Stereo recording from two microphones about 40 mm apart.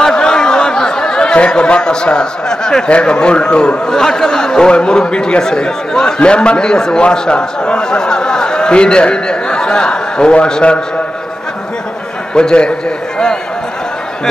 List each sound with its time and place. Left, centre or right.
0.0 s a sound: centre
2.9 s a man's voice: left
12.4 s a man's voice: left